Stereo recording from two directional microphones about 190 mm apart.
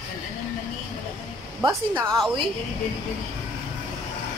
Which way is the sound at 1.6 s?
15° right (ahead or behind).